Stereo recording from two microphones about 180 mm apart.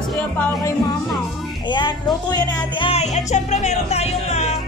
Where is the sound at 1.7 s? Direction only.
25° left (ahead or behind).